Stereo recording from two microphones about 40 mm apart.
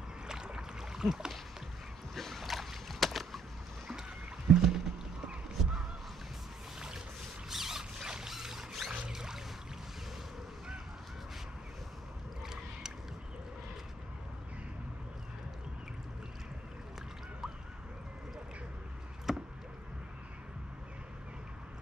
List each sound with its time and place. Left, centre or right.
0.3 s boat: centre
2.1 s boat: centre
4.5 s rowboat: centre
7.4 s zipper: centre
8.3 s rodents: centre
8.9 s music: centre
19.3 s a sound: centre